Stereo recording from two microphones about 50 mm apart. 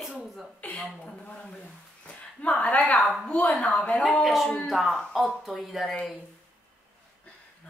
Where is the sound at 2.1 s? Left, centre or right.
Left.